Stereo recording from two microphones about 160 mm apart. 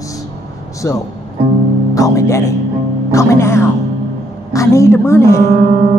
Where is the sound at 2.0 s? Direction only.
20° left (ahead or behind).